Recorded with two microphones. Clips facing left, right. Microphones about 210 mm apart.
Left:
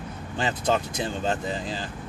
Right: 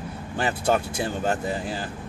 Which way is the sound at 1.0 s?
20° left (ahead or behind).